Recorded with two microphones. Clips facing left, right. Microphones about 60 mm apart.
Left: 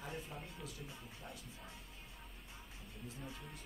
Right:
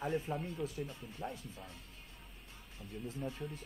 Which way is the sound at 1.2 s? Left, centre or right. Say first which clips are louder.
Right 11 dB; right.